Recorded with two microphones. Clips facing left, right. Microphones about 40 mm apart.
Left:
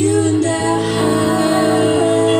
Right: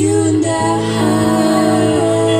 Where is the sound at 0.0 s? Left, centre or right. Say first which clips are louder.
Right 1 dB; centre.